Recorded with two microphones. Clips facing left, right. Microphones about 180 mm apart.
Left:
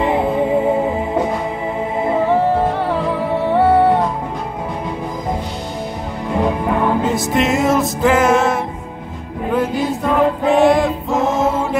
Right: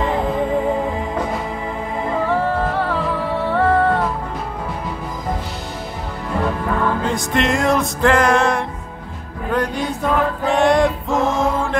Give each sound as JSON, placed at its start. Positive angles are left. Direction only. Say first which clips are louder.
{"t": 0.0, "sound": "music", "louder": "left 3 dB", "side_deg": 10}
{"t": 2.1, "sound": "music", "louder": "left 4 dB", "side_deg": 20}
{"t": 6.4, "sound": "music", "louder": "left 3 dB", "side_deg": 20}
{"t": 7.1, "sound": "music", "louder": "left 3 dB", "side_deg": 0}